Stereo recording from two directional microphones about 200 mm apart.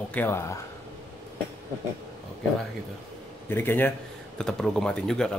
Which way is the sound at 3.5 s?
10° left (ahead or behind).